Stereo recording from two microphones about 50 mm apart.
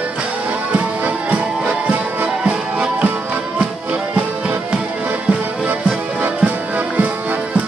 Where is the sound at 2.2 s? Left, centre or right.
Right.